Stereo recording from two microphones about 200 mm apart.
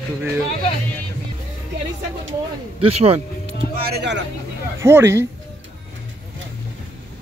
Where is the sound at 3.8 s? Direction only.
55° right (ahead or behind).